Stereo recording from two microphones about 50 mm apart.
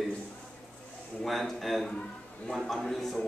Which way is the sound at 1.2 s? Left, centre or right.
Centre.